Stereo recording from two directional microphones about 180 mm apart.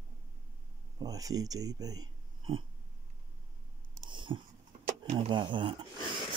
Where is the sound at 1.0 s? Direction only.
20° right (ahead or behind).